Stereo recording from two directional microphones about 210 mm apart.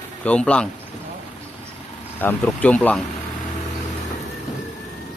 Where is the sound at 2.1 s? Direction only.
10° left (ahead or behind).